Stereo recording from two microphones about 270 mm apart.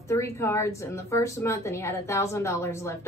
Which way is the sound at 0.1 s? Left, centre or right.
Centre.